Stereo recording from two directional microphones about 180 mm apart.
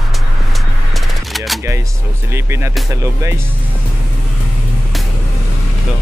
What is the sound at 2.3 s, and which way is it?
Speech, 15° right (ahead or behind).